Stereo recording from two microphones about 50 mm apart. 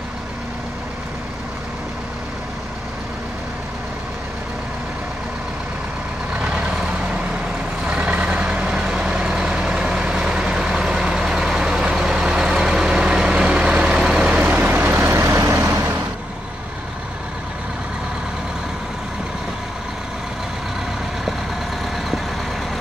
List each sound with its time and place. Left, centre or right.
6.3 s vehicle: right
14.3 s vehicle: right
14.9 s vehicle: right
15.2 s vehicle: right